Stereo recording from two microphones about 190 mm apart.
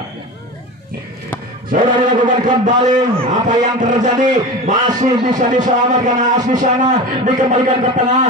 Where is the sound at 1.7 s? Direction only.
45° right (ahead or behind).